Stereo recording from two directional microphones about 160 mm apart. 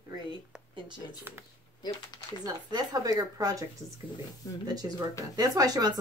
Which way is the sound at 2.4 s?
25° right (ahead or behind).